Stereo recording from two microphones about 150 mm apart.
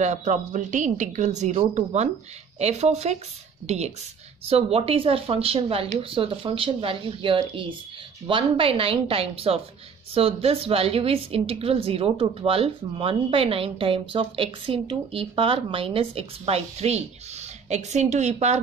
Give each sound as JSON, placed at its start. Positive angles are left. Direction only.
{"t": 0.0, "sound": "a woman's voice", "side_deg": -55}